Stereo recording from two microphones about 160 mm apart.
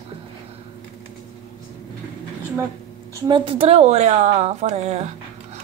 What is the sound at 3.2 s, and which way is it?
A woman's voice, 30° right (ahead or behind).